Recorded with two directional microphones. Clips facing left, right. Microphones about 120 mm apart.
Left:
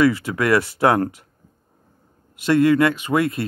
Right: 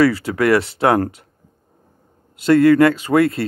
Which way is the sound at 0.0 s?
30° right (ahead or behind).